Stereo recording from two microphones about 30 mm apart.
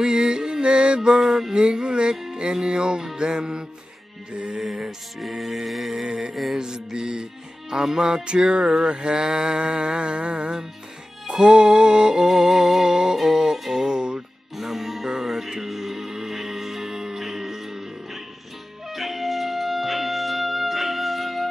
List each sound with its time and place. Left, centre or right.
0.0 s mantra: right
1.5 s music: right
4.6 s music: centre
6.0 s music: right
8.3 s music: right
11.5 s music: right
14.6 s music: centre